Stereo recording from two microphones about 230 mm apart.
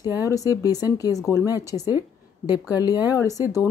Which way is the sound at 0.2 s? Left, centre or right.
Centre.